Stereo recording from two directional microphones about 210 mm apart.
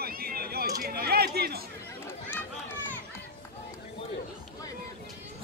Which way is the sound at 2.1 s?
10° left (ahead or behind).